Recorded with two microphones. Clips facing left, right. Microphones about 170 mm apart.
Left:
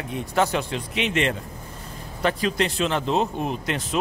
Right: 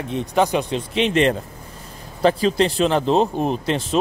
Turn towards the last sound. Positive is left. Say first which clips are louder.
# right 6 dB
turn(degrees=-30)  # may be behind; listen again after turning